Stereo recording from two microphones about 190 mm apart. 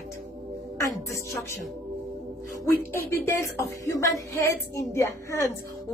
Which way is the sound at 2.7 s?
15° left (ahead or behind).